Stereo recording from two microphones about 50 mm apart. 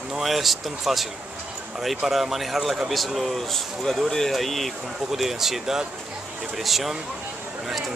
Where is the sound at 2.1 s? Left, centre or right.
Centre.